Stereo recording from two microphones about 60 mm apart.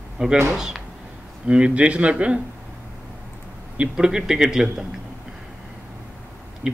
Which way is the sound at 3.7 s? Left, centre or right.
Centre.